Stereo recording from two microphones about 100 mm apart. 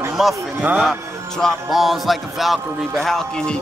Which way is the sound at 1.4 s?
Centre (ahead or behind).